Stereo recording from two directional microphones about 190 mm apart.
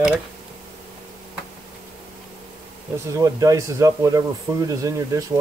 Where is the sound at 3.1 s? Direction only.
20° right (ahead or behind).